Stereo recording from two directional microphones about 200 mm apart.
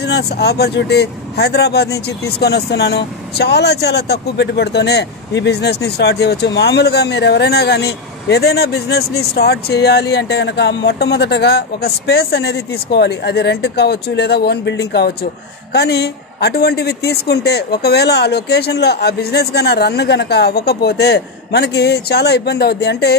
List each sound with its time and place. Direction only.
0.0 s speech: 55° left (ahead or behind)